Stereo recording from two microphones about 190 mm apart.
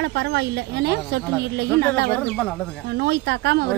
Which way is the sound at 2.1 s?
5° left (ahead or behind).